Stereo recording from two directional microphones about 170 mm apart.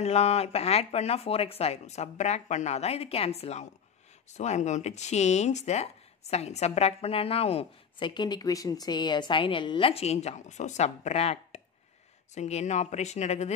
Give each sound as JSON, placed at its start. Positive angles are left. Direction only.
{"t": 0.0, "sound": "a woman's voice", "side_deg": 40}